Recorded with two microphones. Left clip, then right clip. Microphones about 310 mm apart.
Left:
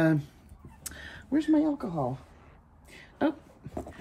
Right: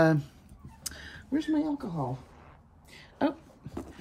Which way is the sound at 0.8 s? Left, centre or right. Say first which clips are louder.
Left 1 dB; centre.